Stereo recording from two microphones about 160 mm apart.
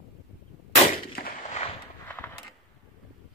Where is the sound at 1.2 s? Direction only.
70° left (ahead or behind).